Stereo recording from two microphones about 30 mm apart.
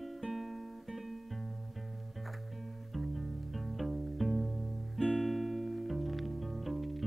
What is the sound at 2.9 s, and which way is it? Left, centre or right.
Music, centre.